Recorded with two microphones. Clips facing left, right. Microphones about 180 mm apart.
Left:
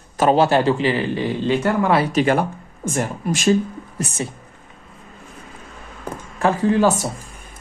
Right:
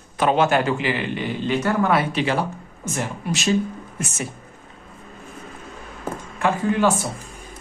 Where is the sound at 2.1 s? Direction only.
50° left (ahead or behind).